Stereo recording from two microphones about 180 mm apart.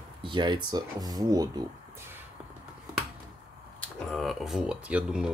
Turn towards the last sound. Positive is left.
turn(degrees=-5)  # may be behind; listen again after turning